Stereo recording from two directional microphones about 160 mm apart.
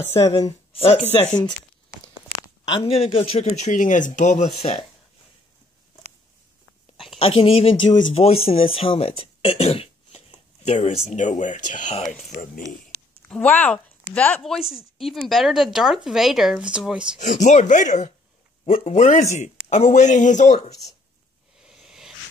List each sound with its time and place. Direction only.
0.3 s speech: 25° left (ahead or behind)
2.7 s speech: 35° left (ahead or behind)
3.7 s speech: 55° left (ahead or behind)
4.6 s speech: 40° left (ahead or behind)
7.2 s speech: 35° left (ahead or behind)
11.1 s speech: 50° left (ahead or behind)
13.3 s speech: 10° left (ahead or behind)
17.2 s speech: 50° left (ahead or behind)
21.5 s a sound: centre (ahead or behind)